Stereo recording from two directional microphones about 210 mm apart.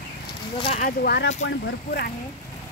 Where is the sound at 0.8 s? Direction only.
50° left (ahead or behind).